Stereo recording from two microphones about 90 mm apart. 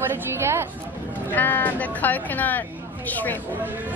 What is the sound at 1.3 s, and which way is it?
A woman's voice, 20° left (ahead or behind).